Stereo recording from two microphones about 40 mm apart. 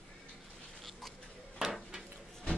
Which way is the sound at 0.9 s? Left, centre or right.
Centre.